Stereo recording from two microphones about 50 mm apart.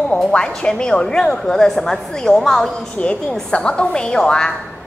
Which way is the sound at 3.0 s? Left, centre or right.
Left.